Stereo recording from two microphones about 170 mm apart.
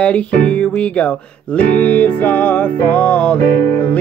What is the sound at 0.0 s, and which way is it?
Music, 5° left (ahead or behind).